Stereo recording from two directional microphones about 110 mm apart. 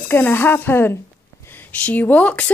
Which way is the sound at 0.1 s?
20° left (ahead or behind).